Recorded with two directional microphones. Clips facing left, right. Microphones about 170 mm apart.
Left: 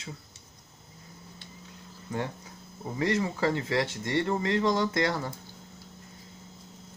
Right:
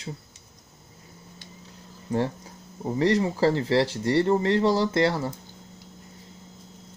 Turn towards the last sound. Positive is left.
turn(degrees=-30)  # may be behind; listen again after turning